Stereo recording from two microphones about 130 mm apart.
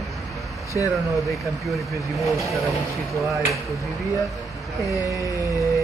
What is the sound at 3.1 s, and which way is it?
Speech, centre (ahead or behind).